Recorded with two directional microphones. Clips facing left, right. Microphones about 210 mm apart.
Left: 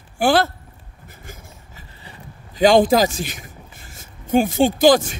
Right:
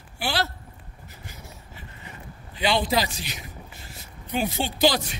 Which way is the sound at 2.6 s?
45° left (ahead or behind).